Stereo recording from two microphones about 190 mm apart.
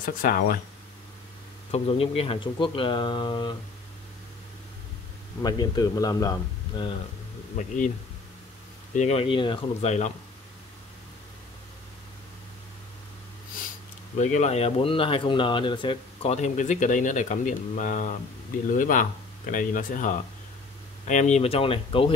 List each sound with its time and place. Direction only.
0.0 s speech: 50° left (ahead or behind)
1.7 s speech: 30° left (ahead or behind)
5.4 s speech: 20° left (ahead or behind)
7.5 s speech: 40° left (ahead or behind)
8.9 s speech: 35° left (ahead or behind)
14.1 s speech: 40° left (ahead or behind)